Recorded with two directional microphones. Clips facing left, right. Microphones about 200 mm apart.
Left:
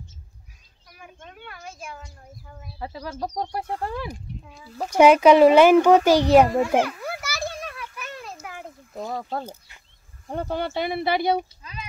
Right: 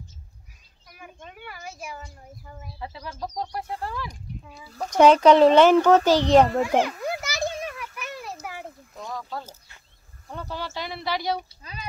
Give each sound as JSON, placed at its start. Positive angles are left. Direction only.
{"t": 0.9, "sound": "speech", "side_deg": -5}
{"t": 2.8, "sound": "speech", "side_deg": 40}
{"t": 3.3, "sound": "speech", "side_deg": 55}
{"t": 4.8, "sound": "a child's voice", "side_deg": 10}
{"t": 6.8, "sound": "children playing", "side_deg": -20}
{"t": 8.5, "sound": "a sound", "side_deg": -5}
{"t": 9.1, "sound": "speech", "side_deg": 45}